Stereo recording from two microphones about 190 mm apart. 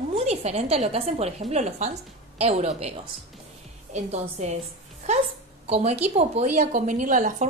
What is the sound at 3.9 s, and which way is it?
Speech, 35° right (ahead or behind).